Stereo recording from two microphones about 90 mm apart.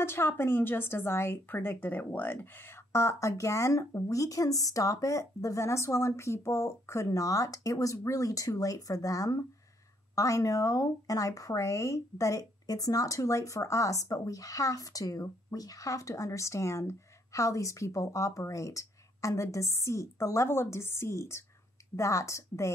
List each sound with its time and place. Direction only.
0.0 s speech: 30° left (ahead or behind)